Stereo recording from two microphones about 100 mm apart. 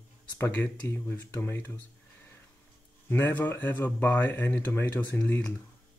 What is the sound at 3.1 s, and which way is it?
Speech, 20° left (ahead or behind).